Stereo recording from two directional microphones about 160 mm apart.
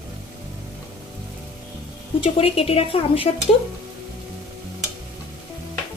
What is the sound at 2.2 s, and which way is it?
A woman's voice, 35° left (ahead or behind).